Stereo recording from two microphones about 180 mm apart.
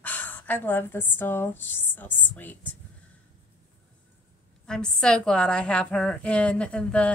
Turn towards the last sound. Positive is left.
turn(degrees=5)  # may be behind; listen again after turning